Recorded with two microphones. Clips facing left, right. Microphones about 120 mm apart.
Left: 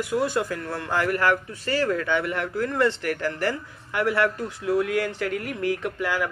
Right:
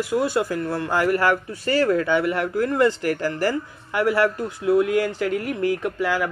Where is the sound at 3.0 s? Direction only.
35° right (ahead or behind).